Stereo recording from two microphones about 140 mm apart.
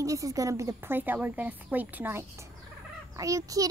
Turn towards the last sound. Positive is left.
turn(degrees=-25)  # may be behind; listen again after turning